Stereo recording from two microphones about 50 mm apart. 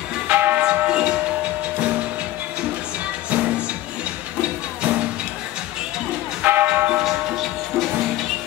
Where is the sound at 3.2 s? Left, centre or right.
Right.